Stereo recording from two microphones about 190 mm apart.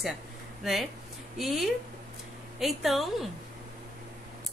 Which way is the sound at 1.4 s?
Centre (ahead or behind).